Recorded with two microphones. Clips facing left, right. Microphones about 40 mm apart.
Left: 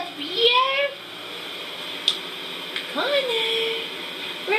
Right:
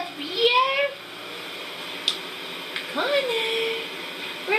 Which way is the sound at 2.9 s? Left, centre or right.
Centre.